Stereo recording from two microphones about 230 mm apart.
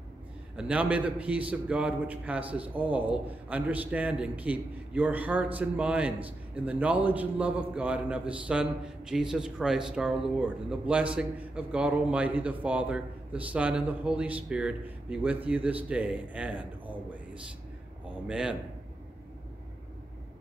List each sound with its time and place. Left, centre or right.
0.6 s a man's voice: centre